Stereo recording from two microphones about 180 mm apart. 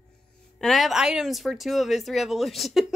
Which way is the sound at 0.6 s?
Centre (ahead or behind).